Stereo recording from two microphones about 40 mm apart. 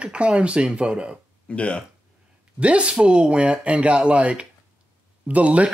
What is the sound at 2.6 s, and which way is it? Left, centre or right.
Speech, right.